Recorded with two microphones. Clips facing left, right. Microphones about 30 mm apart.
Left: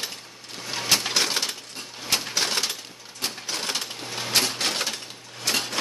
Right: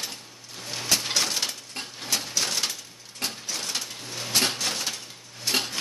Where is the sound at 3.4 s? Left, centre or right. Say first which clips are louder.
Left 3 dB; left.